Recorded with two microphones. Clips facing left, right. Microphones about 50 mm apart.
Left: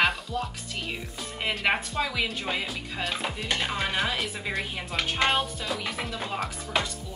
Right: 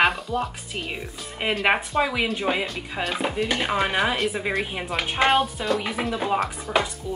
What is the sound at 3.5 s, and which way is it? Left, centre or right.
Speech, centre.